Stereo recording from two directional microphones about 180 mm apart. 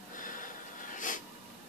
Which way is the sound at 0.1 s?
50° left (ahead or behind).